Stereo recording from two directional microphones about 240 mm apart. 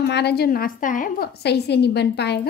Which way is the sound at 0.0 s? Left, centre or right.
Left.